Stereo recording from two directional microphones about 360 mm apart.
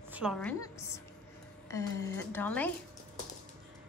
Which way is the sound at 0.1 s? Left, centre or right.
Centre.